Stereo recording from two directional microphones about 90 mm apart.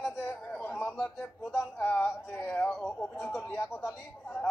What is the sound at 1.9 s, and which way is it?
Speech, 15° left (ahead or behind).